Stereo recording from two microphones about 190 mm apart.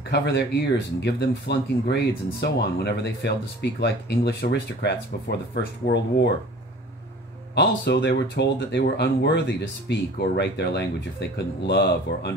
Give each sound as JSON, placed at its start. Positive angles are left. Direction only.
{"t": 0.1, "sound": "speech", "side_deg": 65}
{"t": 7.5, "sound": "speech", "side_deg": 65}